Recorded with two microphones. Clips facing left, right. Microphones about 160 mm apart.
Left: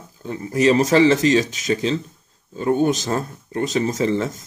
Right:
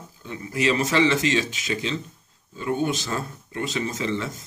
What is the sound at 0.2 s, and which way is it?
Speech, 40° left (ahead or behind).